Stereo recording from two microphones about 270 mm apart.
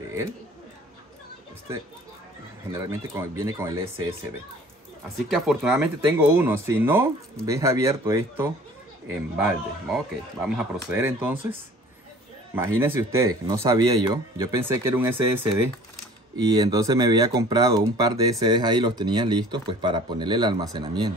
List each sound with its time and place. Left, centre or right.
2.7 s speech: centre
5.3 s speech: centre
12.5 s speech: centre